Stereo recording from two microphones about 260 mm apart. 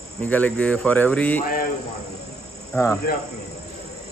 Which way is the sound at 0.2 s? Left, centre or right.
Centre.